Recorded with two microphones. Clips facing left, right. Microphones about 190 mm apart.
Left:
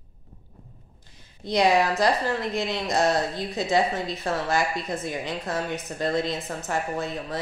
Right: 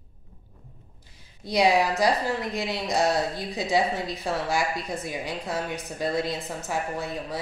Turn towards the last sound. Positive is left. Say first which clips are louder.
# left 2 dB
turn(degrees=-10)  # may be behind; listen again after turning